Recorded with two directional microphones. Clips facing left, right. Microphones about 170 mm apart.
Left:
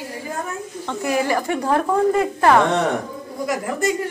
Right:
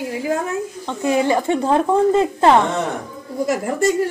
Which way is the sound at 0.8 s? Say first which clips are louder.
Right 3 dB; 20° right (ahead or behind).